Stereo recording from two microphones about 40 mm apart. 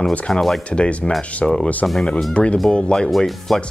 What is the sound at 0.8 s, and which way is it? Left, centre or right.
Speech, left.